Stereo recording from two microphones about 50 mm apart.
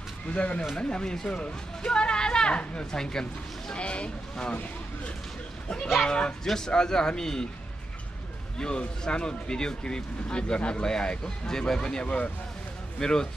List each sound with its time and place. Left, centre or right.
0.3 s speech: left
6.0 s speech: centre
8.5 s speech: centre